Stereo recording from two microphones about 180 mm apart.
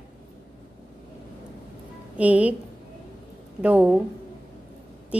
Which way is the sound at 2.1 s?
10° right (ahead or behind).